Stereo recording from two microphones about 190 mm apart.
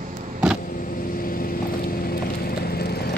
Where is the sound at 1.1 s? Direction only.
50° left (ahead or behind).